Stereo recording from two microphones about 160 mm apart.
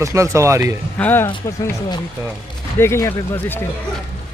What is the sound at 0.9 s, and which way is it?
Speech, 10° left (ahead or behind).